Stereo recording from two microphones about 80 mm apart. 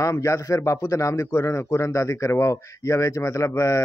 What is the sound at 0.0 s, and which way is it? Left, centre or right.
A man's voice, left.